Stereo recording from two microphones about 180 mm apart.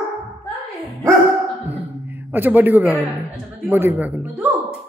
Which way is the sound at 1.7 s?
10° right (ahead or behind).